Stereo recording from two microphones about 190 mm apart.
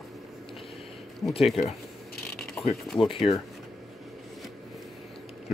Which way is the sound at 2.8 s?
Centre (ahead or behind).